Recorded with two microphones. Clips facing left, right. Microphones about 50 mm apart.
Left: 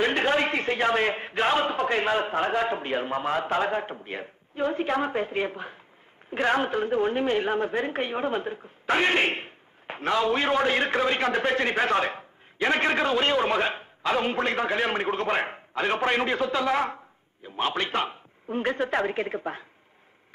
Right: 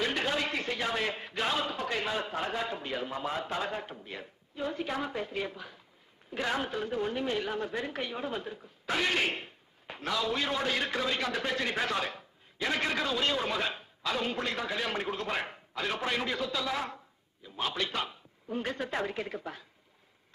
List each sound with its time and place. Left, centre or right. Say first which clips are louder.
0.0 s a woman's voice: left 7 dB; left